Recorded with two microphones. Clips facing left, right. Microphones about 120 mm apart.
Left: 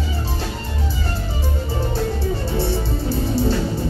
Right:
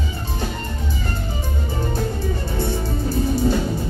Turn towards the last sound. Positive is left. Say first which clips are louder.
# even
turn(degrees=30)  # may be behind; listen again after turning